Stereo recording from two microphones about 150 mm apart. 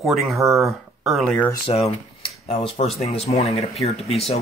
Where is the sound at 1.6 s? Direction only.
40° left (ahead or behind).